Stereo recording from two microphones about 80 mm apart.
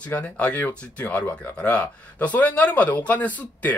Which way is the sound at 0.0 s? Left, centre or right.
Centre.